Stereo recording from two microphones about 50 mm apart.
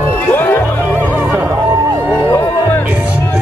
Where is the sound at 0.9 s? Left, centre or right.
Right.